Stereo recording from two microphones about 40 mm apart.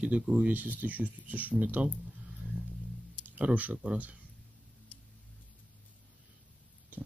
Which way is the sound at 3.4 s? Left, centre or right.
Right.